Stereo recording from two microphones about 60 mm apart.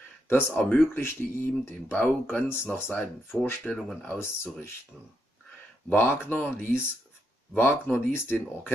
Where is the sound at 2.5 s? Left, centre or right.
Left.